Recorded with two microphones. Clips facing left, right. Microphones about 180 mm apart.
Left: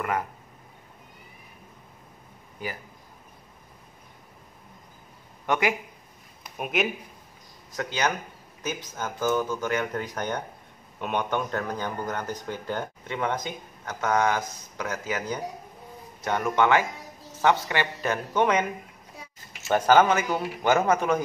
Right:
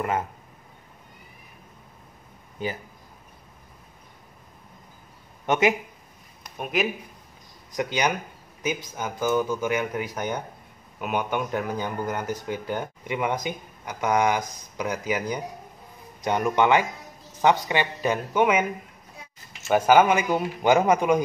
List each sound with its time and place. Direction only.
2.6 s speech: 25° right (ahead or behind)
5.5 s speech: 20° right (ahead or behind)
6.4 s a sound: centre (ahead or behind)
7.7 s a man's voice: 15° right (ahead or behind)
19.7 s a man's voice: 10° right (ahead or behind)